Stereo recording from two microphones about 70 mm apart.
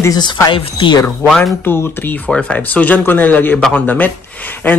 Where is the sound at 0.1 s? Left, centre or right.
Left.